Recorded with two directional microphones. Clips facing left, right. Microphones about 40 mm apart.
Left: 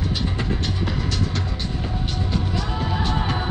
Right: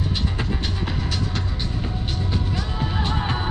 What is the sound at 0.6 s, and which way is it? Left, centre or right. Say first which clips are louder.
Music: left 2 dB; centre.